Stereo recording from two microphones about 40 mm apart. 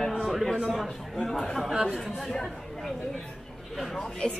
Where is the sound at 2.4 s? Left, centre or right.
Centre.